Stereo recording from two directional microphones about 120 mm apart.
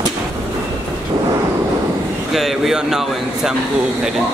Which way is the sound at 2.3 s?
5° right (ahead or behind).